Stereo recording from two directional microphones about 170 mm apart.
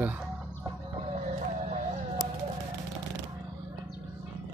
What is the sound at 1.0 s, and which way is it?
Music, 40° right (ahead or behind).